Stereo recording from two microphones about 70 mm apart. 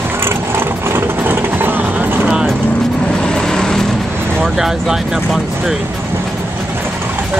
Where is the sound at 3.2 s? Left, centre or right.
Centre.